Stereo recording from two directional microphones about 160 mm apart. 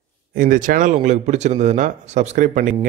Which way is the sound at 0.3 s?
60° right (ahead or behind).